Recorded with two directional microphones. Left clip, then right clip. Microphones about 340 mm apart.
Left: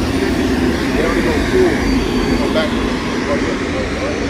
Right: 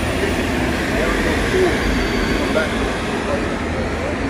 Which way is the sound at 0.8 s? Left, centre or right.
Right.